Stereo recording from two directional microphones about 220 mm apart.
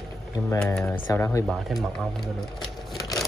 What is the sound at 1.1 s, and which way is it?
Speech, 10° left (ahead or behind).